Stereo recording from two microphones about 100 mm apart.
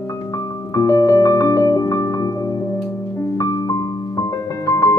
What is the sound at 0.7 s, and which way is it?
Music, 35° left (ahead or behind).